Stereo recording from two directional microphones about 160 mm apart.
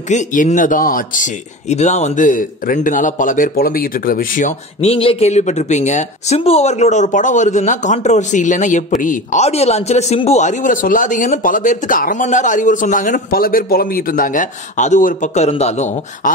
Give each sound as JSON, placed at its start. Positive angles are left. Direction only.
{"t": 0.1, "sound": "speech", "side_deg": 50}